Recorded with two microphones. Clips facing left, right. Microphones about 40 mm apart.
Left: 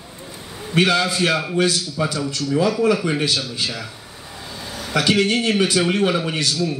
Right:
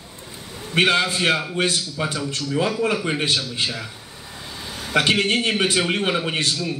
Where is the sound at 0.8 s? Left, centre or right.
Right.